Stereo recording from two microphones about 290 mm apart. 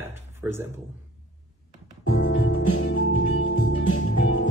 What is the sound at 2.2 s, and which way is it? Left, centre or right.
Music, left.